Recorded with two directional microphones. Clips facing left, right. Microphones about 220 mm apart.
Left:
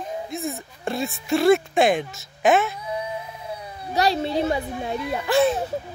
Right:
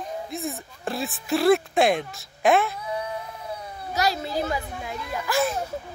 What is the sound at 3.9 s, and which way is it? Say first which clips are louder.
A child's voice: left 4 dB; 30° left (ahead or behind).